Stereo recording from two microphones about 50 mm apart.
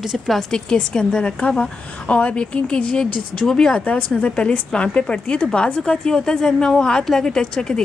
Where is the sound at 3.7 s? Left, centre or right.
Left.